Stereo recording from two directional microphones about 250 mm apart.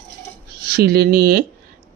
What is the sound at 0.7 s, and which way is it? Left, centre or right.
Speech, right.